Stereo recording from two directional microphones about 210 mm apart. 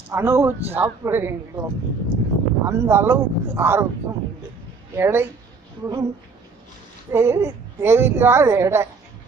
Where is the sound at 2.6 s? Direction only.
10° right (ahead or behind).